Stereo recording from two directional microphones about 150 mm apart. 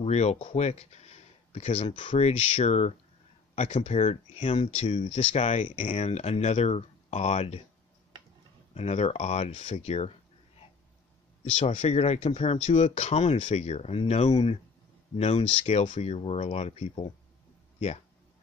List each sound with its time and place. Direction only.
0.0 s speech: 45° left (ahead or behind)
8.7 s speech: 45° left (ahead or behind)
11.5 s speech: 50° left (ahead or behind)